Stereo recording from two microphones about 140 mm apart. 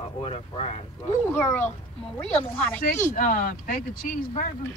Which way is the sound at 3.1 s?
85° left.